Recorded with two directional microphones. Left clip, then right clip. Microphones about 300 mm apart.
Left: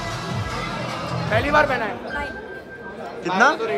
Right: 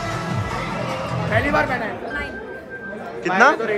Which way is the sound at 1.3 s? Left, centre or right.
Centre.